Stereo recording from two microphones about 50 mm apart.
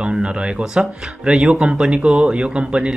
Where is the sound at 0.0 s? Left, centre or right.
Right.